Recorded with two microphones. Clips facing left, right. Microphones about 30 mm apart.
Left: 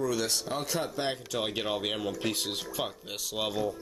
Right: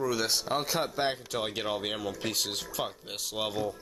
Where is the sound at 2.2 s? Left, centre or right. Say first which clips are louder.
Left 1 dB; centre.